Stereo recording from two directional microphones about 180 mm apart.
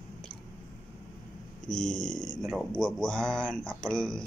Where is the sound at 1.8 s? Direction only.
45° left (ahead or behind).